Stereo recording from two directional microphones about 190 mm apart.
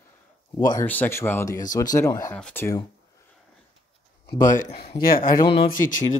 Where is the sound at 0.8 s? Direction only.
10° left (ahead or behind).